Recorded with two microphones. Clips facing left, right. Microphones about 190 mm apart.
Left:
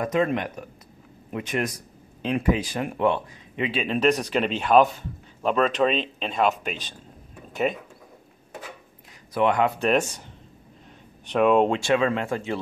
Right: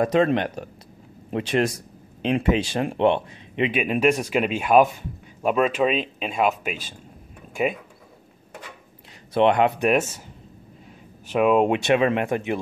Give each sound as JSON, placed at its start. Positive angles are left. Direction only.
{"t": 0.0, "sound": "speech", "side_deg": -30}
{"t": 9.3, "sound": "speech", "side_deg": -25}
{"t": 9.8, "sound": "speech", "side_deg": -5}
{"t": 11.2, "sound": "speech", "side_deg": -5}
{"t": 11.7, "sound": "speech", "side_deg": -20}